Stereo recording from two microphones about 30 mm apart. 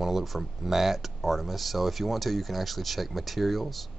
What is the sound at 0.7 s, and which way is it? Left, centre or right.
Speech, centre.